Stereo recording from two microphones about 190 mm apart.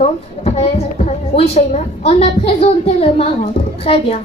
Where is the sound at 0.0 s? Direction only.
35° left (ahead or behind).